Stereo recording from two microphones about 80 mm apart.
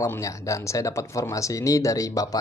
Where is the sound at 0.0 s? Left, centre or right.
Left.